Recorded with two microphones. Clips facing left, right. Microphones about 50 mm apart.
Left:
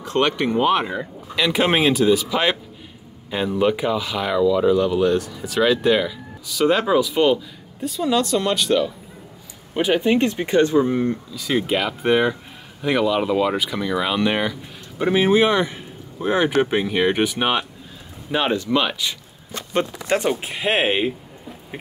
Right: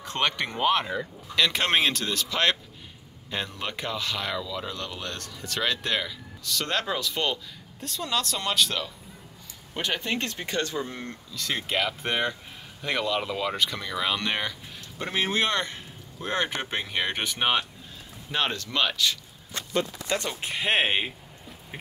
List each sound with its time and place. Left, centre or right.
0.0 s speech: centre
19.5 s speech: left
20.2 s speech: centre
20.4 s speech: centre